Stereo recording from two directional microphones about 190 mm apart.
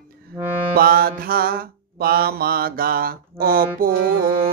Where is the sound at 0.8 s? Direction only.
50° right (ahead or behind).